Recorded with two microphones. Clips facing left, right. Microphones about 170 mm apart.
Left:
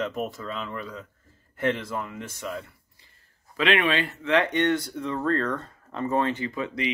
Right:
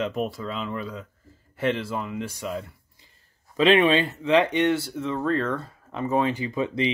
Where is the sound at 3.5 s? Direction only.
25° right (ahead or behind).